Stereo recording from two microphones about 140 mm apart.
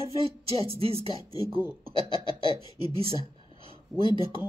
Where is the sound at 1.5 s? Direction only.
15° right (ahead or behind).